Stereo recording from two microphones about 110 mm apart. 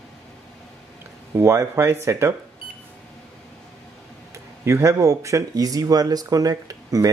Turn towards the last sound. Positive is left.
turn(degrees=-35)  # may be behind; listen again after turning